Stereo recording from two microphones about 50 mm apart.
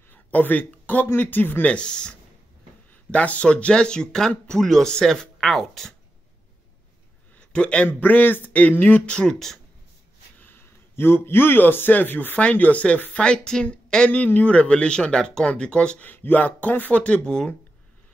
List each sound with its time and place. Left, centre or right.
0.1 s a sound: left
1.0 s speech: left
1.6 s a man's voice: left; by 5.9 s centre
7.3 s a sound: left
7.8 s speech: left
9.1 s speech: centre
10.4 s a man's voice: left
12.4 s a man's voice: left
16.0 s speech: left; by 17.5 s centre